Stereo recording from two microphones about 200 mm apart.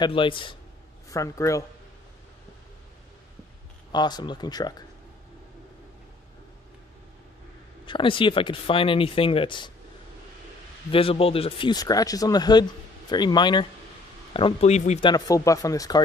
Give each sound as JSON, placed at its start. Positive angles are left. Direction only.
{"t": 0.0, "sound": "speech", "side_deg": 25}
{"t": 3.9, "sound": "speech", "side_deg": 20}
{"t": 7.8, "sound": "speech", "side_deg": 25}
{"t": 10.9, "sound": "speech", "side_deg": 30}
{"t": 15.0, "sound": "speech", "side_deg": 20}